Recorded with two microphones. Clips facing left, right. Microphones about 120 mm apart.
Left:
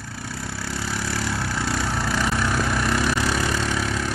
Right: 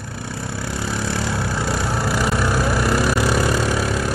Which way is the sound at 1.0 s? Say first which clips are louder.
Right 3 dB; 20° right (ahead or behind).